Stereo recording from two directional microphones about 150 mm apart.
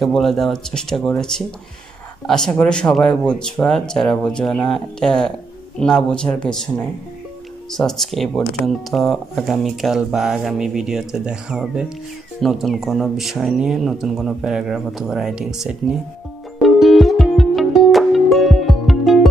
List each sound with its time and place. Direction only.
0.0 s speech: centre (ahead or behind)
7.7 s speech: 5° left (ahead or behind)
16.5 s music: centre (ahead or behind)